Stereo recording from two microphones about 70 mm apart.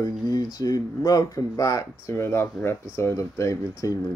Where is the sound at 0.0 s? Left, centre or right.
Left.